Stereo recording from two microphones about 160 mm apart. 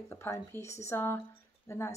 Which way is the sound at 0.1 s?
15° left (ahead or behind).